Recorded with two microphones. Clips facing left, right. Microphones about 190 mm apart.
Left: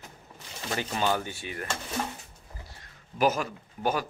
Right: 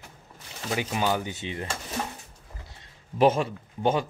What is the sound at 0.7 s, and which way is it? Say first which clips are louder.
Speech: right 2 dB; 10° right (ahead or behind).